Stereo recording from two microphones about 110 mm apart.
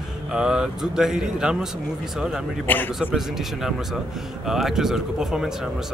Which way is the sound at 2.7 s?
15° left (ahead or behind).